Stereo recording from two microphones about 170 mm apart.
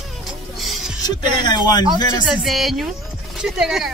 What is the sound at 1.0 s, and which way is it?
Speech, 25° left (ahead or behind).